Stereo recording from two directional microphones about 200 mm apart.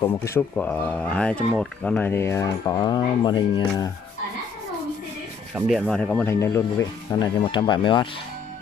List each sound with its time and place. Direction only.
0.0 s speech: 10° left (ahead or behind)
5.5 s speech: centre (ahead or behind); by 8.1 s 25° left (ahead or behind)